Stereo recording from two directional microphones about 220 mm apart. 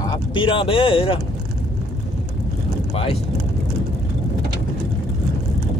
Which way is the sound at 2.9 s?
25° left (ahead or behind).